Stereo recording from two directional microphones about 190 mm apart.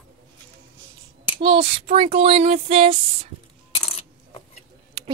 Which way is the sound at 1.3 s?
30° right (ahead or behind).